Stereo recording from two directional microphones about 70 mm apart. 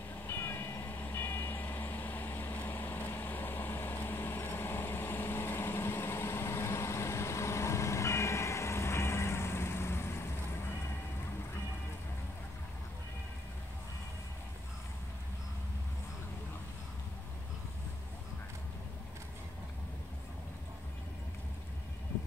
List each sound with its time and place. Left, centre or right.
0.3 s vehicle: left